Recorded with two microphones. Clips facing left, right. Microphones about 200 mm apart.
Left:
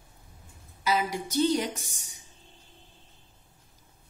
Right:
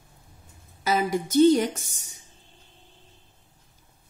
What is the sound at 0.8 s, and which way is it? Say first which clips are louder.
A woman's voice: right 4 dB; 50° right (ahead or behind).